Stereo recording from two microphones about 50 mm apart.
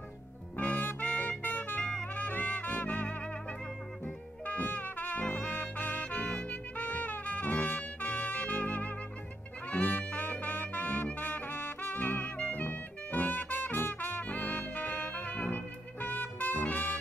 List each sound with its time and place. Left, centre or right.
0.6 s music: left
1.8 s brass instrument: centre
2.1 s trumpet: left
4.0 s music: left
5.2 s brass instrument: left
5.5 s brass instrument: left
6.0 s brass instrument: left
14.2 s music: left